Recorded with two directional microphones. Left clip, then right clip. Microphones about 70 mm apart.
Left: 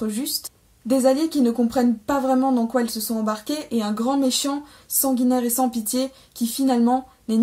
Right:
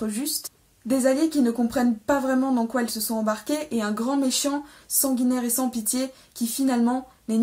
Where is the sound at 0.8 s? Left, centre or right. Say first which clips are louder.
Left 3 dB; left.